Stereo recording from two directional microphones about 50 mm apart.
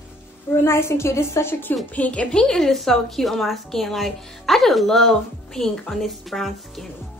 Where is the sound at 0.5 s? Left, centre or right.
Left.